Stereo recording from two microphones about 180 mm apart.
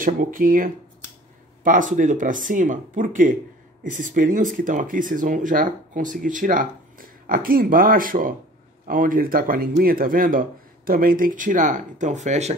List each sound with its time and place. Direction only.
0.0 s speech: 50° right (ahead or behind)